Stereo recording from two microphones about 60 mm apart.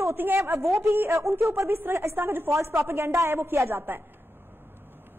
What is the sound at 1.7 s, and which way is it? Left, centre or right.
A woman's voice, right.